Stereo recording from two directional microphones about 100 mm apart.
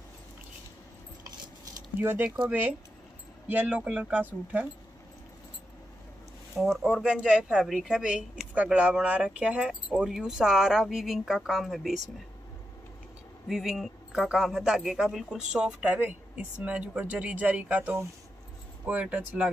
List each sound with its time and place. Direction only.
2.0 s speech: 20° right (ahead or behind)
6.5 s speech: centre (ahead or behind)
13.5 s speech: 5° right (ahead or behind)